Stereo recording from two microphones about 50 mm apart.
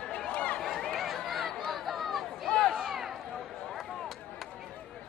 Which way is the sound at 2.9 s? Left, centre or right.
Centre.